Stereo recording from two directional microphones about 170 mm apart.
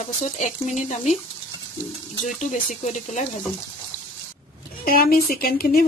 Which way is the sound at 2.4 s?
45° left (ahead or behind).